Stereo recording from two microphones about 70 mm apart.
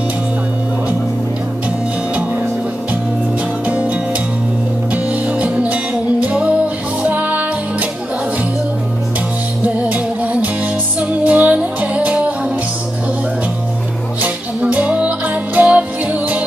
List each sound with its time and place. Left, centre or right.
3.6 s music: centre
4.9 s music: centre
9.6 s music: centre
14.2 s music: centre